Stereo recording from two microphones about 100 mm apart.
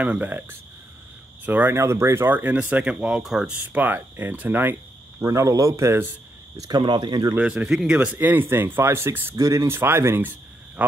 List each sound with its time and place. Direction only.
0.0 s speech: 15° right (ahead or behind)
1.8 s speech: 30° right (ahead or behind)
5.2 s speech: 30° right (ahead or behind)
6.7 s speech: 45° right (ahead or behind)
7.3 s speech: 10° right (ahead or behind)